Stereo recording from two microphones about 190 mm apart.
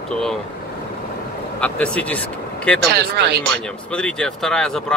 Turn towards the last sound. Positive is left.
turn(degrees=5)  # may be behind; listen again after turning